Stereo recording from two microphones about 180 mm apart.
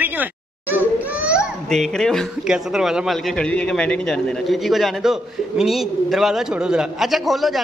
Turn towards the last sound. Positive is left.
turn(degrees=0)  # may be behind; listen again after turning